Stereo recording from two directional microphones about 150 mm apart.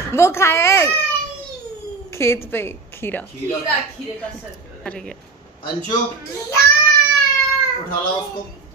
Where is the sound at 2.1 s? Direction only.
15° left (ahead or behind).